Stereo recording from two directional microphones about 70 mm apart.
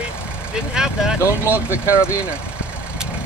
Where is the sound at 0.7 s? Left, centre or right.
Centre.